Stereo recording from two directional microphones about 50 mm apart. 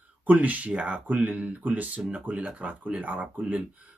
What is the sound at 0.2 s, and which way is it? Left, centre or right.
Speech, right.